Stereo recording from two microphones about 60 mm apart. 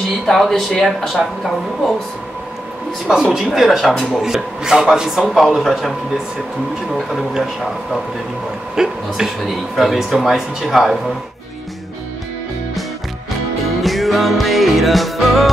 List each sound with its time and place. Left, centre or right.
0.3 s speech: centre
3.1 s speech: centre
4.2 s a man's voice: centre
8.7 s speech: centre
13.8 s music: centre